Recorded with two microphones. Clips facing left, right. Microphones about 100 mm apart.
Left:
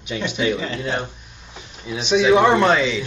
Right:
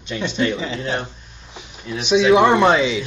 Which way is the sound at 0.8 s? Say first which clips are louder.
Even; 15° left (ahead or behind).